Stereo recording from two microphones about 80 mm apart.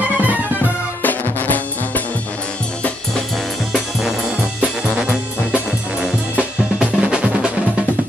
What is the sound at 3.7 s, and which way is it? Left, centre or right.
Music, centre.